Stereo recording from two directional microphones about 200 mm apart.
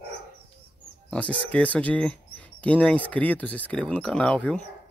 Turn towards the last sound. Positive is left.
turn(degrees=5)  # may be behind; listen again after turning